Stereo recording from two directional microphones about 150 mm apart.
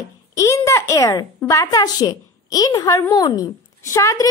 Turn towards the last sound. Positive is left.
turn(degrees=20)  # may be behind; listen again after turning